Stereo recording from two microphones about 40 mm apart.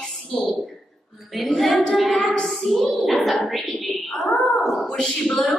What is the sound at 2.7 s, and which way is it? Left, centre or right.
Speech, centre.